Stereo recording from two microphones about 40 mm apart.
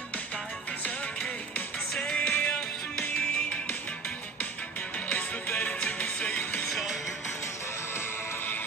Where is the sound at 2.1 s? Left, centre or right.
Left.